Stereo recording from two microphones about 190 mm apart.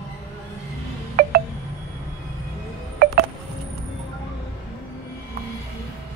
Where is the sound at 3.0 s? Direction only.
55° right (ahead or behind).